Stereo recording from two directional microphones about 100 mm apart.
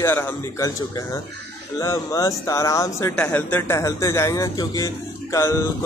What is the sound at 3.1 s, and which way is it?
Speech, 15° left (ahead or behind).